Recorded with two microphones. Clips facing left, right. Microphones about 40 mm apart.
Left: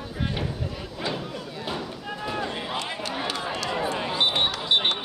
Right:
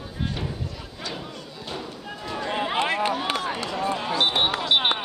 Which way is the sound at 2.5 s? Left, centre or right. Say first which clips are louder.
Right 6 dB; right.